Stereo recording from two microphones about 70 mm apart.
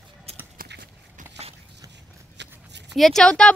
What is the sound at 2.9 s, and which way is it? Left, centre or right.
Speech, centre.